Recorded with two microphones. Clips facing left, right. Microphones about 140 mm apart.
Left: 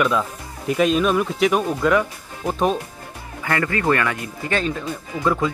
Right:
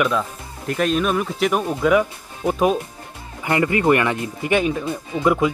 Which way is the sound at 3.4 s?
20° right (ahead or behind).